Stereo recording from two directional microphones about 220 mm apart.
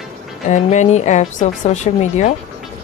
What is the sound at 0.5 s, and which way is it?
Speech, 30° left (ahead or behind).